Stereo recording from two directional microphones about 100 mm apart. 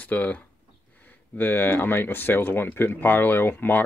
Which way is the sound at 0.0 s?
15° left (ahead or behind).